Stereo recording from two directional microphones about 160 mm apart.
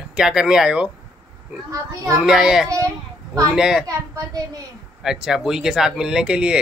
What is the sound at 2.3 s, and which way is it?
A man's voice, 5° right (ahead or behind).